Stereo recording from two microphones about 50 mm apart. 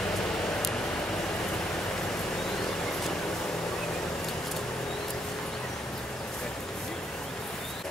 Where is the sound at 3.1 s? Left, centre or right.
Centre.